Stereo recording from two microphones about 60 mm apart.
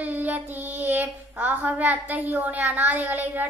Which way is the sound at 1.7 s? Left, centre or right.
Right.